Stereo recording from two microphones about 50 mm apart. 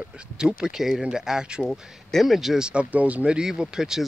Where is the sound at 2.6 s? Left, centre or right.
Right.